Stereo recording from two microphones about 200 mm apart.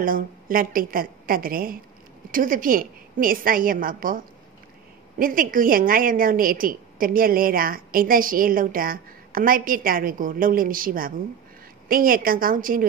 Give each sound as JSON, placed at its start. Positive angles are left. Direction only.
{"t": 0.0, "sound": "a woman's voice", "side_deg": -45}
{"t": 5.2, "sound": "a woman's voice", "side_deg": -45}